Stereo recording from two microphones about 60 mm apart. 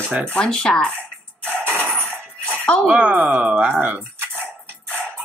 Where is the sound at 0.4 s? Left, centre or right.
Centre.